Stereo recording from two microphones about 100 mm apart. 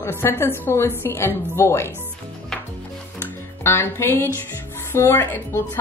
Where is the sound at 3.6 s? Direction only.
25° left (ahead or behind).